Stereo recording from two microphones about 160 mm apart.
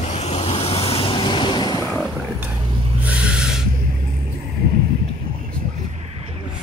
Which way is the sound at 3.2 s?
5° right (ahead or behind).